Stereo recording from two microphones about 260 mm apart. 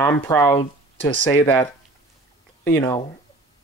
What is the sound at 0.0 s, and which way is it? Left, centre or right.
Speech, centre.